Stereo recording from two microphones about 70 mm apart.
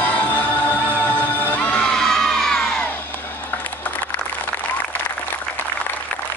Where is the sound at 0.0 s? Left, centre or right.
Left; by 2.6 s centre.